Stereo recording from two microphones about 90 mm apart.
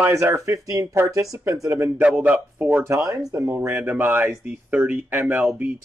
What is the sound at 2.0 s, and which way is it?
Speech, 15° right (ahead or behind).